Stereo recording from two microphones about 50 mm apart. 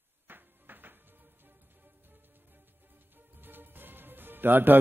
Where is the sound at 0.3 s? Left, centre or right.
Right.